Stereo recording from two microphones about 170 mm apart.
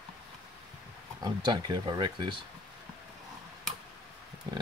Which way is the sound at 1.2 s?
25° right (ahead or behind).